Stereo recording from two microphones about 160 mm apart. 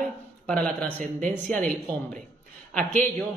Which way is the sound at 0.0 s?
5° left (ahead or behind).